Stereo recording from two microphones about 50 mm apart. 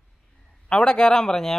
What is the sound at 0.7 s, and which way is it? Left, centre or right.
Speech, centre.